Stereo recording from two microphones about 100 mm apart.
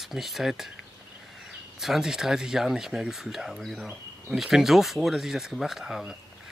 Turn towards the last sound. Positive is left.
turn(degrees=-5)  # may be behind; listen again after turning